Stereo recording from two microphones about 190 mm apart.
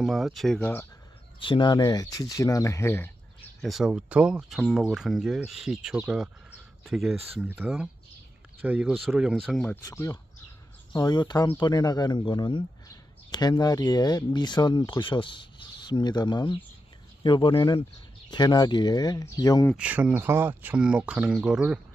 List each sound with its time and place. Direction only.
0.0 s speech: centre (ahead or behind)
0.6 s speech: 10° left (ahead or behind)
1.4 s speech: 25° left (ahead or behind)
3.6 s speech: centre (ahead or behind)
9.8 s speech: 15° left (ahead or behind)
19.8 s speech: 5° right (ahead or behind)